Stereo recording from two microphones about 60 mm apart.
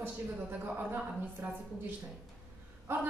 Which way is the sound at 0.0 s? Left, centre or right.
Right.